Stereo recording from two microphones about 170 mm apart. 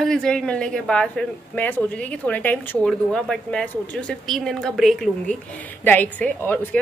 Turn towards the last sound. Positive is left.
turn(degrees=10)  # may be behind; listen again after turning